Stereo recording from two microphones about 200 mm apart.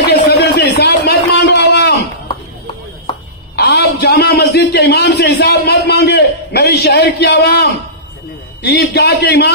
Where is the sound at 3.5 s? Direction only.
55° left (ahead or behind).